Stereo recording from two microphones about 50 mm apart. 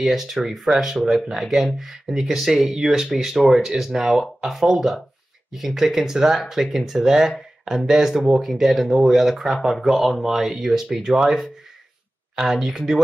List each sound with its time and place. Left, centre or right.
0.0 s speech: centre